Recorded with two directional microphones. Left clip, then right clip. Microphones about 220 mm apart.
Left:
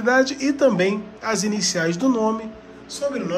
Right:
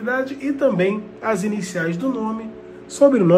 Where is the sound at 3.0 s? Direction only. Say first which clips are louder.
Right 11 dB; 15° right (ahead or behind).